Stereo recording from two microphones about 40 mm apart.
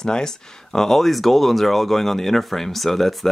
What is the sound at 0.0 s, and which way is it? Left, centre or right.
Speech, centre.